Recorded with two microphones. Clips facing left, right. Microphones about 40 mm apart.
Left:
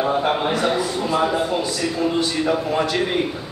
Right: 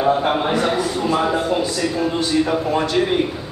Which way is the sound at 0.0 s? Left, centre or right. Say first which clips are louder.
Right 2 dB; centre.